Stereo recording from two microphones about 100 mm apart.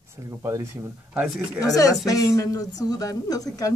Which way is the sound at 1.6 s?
35° left (ahead or behind).